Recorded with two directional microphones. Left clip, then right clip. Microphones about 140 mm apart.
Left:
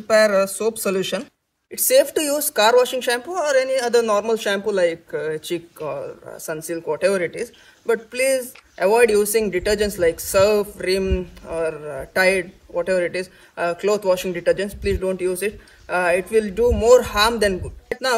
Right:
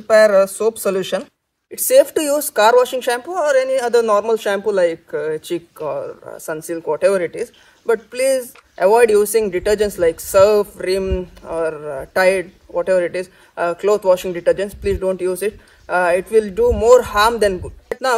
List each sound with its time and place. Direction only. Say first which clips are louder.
0.0 s speech: right 5 dB; 20° right (ahead or behind)